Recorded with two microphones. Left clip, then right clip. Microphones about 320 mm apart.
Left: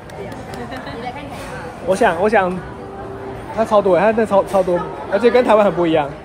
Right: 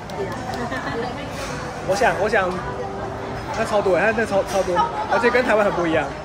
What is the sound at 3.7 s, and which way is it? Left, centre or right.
Speech, centre.